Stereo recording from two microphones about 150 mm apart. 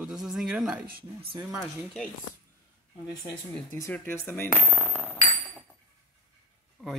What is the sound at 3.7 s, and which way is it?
Speech, 15° left (ahead or behind).